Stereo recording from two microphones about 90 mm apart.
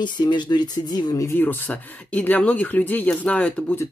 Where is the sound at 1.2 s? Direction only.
20° left (ahead or behind).